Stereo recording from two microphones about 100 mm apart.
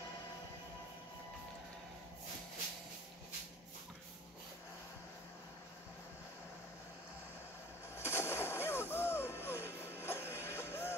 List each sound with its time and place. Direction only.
7.9 s music: 25° left (ahead or behind)